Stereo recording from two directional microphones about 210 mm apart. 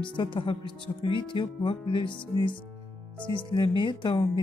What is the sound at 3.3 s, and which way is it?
Speech, 20° left (ahead or behind).